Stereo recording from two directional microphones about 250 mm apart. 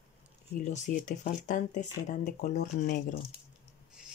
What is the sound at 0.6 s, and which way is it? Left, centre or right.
Speech, left.